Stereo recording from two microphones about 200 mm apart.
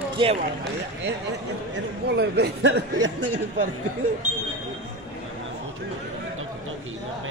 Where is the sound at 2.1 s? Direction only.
55° right (ahead or behind).